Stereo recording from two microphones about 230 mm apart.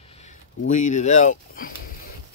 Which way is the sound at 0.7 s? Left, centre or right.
Left.